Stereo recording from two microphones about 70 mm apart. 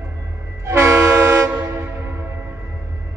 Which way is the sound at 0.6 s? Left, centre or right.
Right.